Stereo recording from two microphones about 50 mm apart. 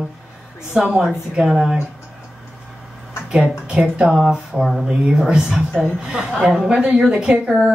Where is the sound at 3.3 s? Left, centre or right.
Centre.